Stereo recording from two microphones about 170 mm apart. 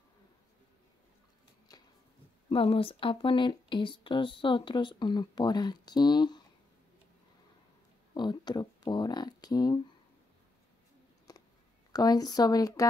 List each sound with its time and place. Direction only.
1.7 s a sound: 20° left (ahead or behind)
2.5 s speech: 30° left (ahead or behind)
8.1 s speech: 25° left (ahead or behind)
11.9 s speech: 25° left (ahead or behind)